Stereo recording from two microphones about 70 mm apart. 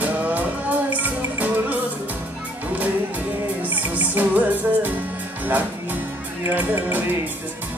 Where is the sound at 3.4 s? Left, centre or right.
Right.